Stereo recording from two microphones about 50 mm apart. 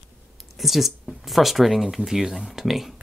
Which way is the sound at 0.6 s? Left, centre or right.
Centre.